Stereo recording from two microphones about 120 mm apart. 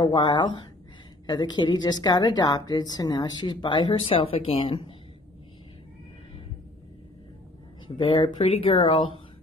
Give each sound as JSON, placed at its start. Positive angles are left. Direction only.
{"t": 0.0, "sound": "a woman's voice", "side_deg": 40}
{"t": 8.0, "sound": "a woman's voice", "side_deg": 40}
{"t": 8.5, "sound": "speech", "side_deg": 55}